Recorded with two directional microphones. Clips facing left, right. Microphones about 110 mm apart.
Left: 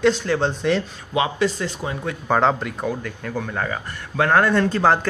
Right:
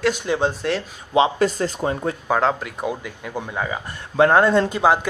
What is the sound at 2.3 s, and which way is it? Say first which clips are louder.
Speech: left 2 dB; centre (ahead or behind).